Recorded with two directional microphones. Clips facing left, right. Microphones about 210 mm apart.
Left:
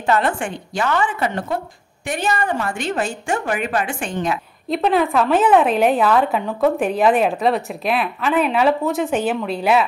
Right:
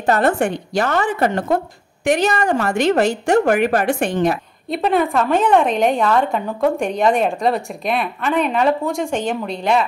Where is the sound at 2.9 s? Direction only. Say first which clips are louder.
Right 8 dB; 70° right (ahead or behind).